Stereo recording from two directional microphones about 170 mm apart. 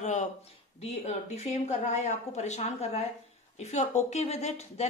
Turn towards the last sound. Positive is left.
turn(degrees=40)  # may be behind; listen again after turning